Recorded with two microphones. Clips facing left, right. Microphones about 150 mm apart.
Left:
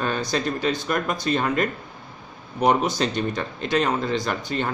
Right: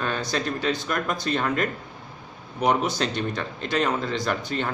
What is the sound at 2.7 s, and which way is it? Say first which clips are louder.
A man's voice: left 2 dB; 5° left (ahead or behind).